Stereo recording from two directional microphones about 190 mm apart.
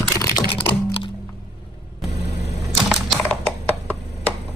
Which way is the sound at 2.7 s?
Centre (ahead or behind).